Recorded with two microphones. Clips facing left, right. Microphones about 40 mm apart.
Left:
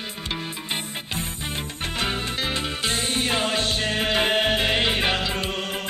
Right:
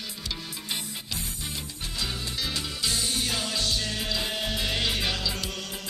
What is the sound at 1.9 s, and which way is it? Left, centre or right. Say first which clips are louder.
Music: left 6 dB; left.